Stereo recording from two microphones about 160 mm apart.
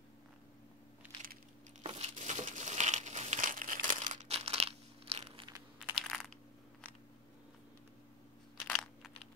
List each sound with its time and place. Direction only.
1.8 s crumpling: 40° right (ahead or behind)
5.9 s coin: centre (ahead or behind)
8.6 s crunch: centre (ahead or behind)